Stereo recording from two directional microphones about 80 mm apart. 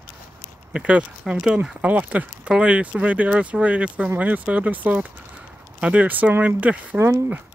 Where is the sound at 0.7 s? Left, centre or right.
Centre.